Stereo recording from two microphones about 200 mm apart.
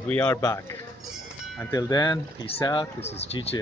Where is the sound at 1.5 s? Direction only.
10° left (ahead or behind).